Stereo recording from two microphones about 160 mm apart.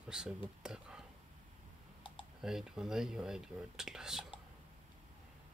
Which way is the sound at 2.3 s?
Centre (ahead or behind).